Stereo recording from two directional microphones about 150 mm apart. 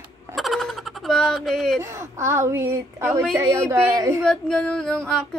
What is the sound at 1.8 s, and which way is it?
Speech, 20° right (ahead or behind).